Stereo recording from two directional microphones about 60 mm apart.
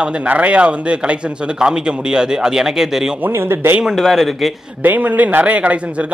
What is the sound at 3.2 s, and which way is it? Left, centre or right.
Speech, right.